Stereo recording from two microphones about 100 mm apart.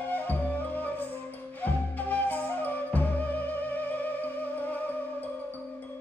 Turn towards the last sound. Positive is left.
turn(degrees=15)  # may be behind; listen again after turning